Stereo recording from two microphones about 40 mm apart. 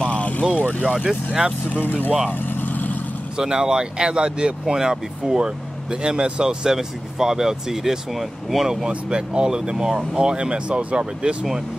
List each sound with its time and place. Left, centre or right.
0.0 s vehicle: left
0.6 s speech: left
0.9 s speech: centre
1.7 s speech: left
2.5 s vehicle: left
3.3 s speech: centre
8.8 s speech: right